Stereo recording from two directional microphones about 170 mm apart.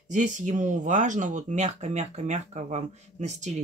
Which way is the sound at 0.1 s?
45° right (ahead or behind).